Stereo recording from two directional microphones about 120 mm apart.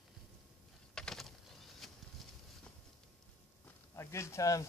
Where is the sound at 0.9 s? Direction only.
5° left (ahead or behind).